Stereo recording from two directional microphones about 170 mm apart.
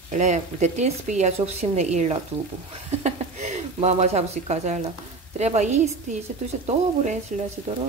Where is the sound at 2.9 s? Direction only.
40° right (ahead or behind).